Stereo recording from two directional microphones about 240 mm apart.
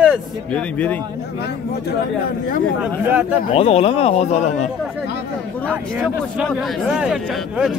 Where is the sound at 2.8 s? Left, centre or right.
Centre.